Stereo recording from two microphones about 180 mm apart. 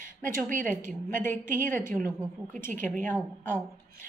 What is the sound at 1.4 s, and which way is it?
A woman's voice, 45° right (ahead or behind).